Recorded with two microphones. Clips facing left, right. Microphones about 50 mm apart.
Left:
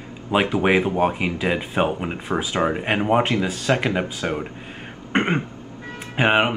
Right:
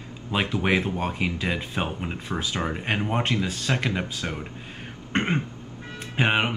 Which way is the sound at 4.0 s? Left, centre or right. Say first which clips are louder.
Left 6 dB; left.